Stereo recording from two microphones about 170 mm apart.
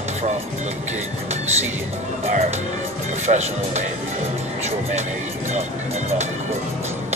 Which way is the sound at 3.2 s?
40° right (ahead or behind).